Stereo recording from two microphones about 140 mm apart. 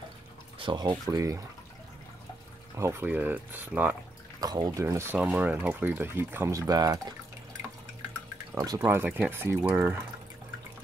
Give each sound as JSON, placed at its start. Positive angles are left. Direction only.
{"t": 0.6, "sound": "speech", "side_deg": -35}
{"t": 2.7, "sound": "speech", "side_deg": -20}
{"t": 4.4, "sound": "speech", "side_deg": -30}
{"t": 8.5, "sound": "speech", "side_deg": -30}
{"t": 8.8, "sound": "speech", "side_deg": -15}